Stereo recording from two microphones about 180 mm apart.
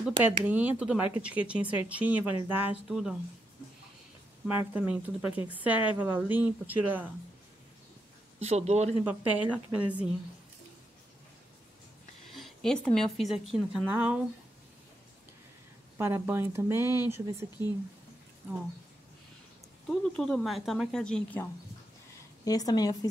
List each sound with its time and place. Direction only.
0.0 s speech: 10° right (ahead or behind)
4.7 s speech: 10° right (ahead or behind)
8.4 s speech: 35° right (ahead or behind)
9.0 s speech: 5° right (ahead or behind)
12.4 s speech: centre (ahead or behind)
16.0 s speech: 10° right (ahead or behind)
19.9 s speech: centre (ahead or behind)
22.4 s a woman's voice: 20° left (ahead or behind)